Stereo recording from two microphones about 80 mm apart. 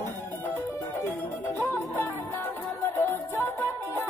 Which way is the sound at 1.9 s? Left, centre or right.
Left.